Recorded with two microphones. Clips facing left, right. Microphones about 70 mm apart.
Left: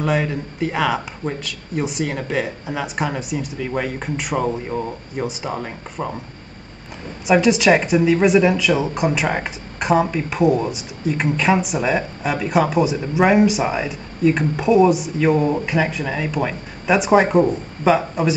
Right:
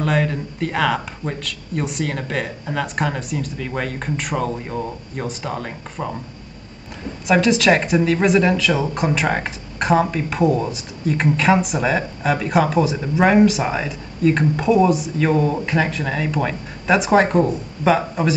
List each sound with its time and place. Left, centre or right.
0.0 s a woman's voice: centre
7.2 s a woman's voice: centre